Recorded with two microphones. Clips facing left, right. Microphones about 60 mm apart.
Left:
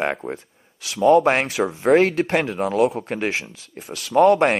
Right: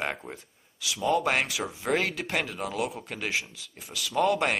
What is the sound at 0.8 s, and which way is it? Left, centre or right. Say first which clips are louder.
Speech: left 11 dB; left.